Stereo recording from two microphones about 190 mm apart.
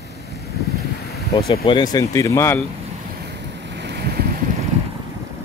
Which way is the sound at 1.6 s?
20° left (ahead or behind).